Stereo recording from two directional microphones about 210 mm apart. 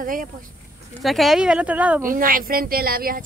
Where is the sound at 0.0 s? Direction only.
40° right (ahead or behind).